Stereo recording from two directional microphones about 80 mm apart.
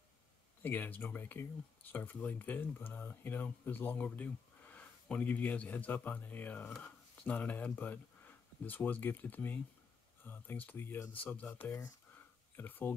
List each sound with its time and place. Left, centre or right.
0.6 s speech: left